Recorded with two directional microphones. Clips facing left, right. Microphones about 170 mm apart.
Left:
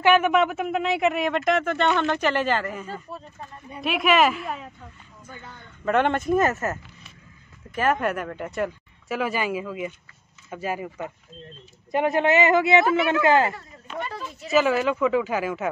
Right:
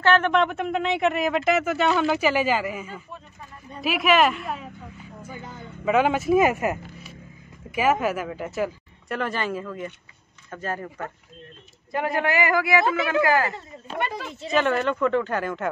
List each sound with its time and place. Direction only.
0.0 s speech: 10° left (ahead or behind)
11.9 s speech: 20° left (ahead or behind)
13.9 s speech: 75° right (ahead or behind)
14.5 s speech: 5° left (ahead or behind)